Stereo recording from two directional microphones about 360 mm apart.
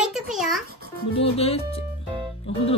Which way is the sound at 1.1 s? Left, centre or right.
Centre.